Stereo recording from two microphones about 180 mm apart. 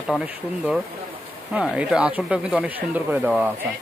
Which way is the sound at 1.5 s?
5° right (ahead or behind).